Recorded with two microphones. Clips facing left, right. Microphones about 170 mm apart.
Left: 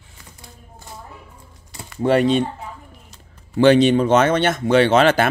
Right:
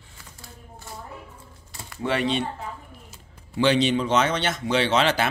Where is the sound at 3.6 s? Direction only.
50° left (ahead or behind).